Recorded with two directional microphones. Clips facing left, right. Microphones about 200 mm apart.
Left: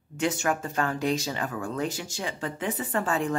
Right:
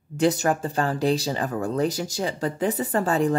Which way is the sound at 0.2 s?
35° right (ahead or behind).